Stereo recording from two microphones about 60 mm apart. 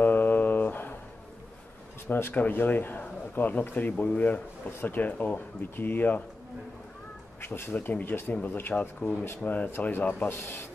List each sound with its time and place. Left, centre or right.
0.0 s a sound: left
2.0 s speech: left
7.4 s speech: left
7.7 s speech: left
9.4 s speech: left
10.3 s speech: left